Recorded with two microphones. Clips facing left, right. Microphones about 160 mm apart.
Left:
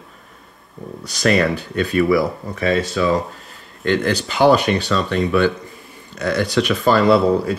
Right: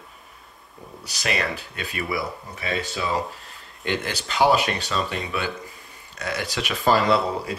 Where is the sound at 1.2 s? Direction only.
45° left (ahead or behind).